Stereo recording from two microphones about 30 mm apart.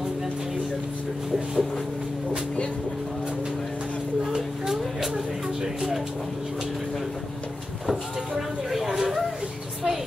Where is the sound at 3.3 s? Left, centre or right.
Right.